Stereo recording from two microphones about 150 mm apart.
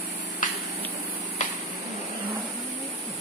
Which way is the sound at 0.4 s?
60° left (ahead or behind).